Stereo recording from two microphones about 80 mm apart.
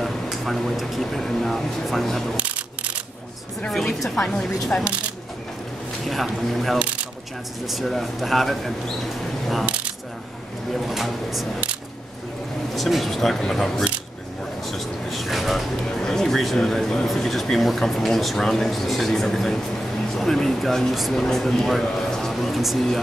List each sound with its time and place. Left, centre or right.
0.0 s speech: centre
2.3 s single-lens reflex camera: centre
3.7 s a woman's voice: centre
4.7 s a woman's voice: centre
6.0 s speech: centre
10.7 s speech: centre
12.7 s speech: centre